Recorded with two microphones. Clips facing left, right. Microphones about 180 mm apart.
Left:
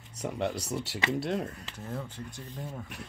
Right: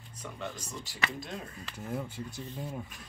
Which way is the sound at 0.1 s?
80° left.